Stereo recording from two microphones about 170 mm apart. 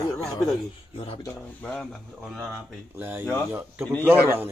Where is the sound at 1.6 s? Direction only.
5° left (ahead or behind).